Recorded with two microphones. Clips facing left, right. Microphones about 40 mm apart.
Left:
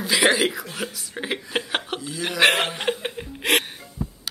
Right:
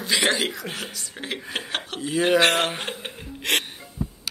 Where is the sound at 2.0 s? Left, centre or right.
Right.